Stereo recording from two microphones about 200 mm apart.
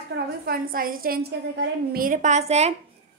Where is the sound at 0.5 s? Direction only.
45° right (ahead or behind).